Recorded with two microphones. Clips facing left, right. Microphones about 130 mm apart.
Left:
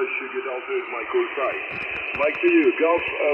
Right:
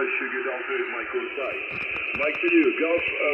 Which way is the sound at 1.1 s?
65° left (ahead or behind).